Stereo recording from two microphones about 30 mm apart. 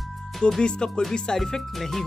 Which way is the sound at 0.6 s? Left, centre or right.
Left.